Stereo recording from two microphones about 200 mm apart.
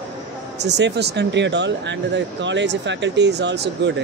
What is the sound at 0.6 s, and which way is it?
Speech, 60° right (ahead or behind).